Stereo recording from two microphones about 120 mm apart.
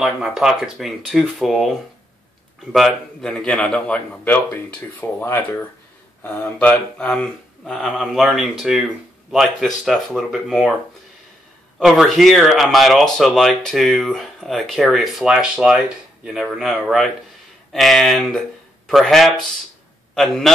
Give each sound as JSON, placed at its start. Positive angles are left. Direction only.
{"t": 0.0, "sound": "a man's voice", "side_deg": -5}
{"t": 11.8, "sound": "speech", "side_deg": 0}